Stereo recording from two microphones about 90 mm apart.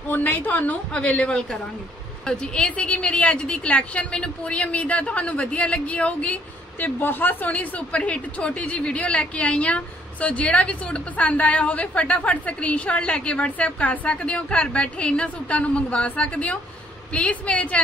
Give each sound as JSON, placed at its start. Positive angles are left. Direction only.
{"t": 0.1, "sound": "a woman's voice", "side_deg": 20}